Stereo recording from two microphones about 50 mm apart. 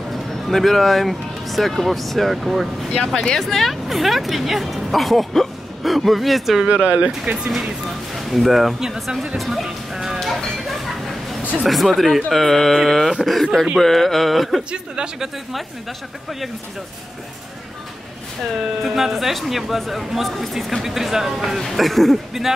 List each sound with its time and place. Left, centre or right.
0.1 s speech: centre
2.9 s a woman's voice: centre
6.7 s speech: right
7.3 s speech: right
8.1 s a woman's voice: centre
9.4 s music: centre
11.6 s a woman's voice: centre
14.7 s speech: centre
18.8 s a woman's voice: centre